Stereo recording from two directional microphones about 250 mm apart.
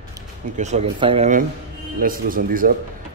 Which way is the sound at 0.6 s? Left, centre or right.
Right.